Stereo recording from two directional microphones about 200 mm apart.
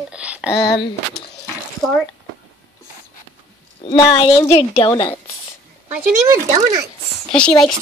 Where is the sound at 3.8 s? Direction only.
25° left (ahead or behind).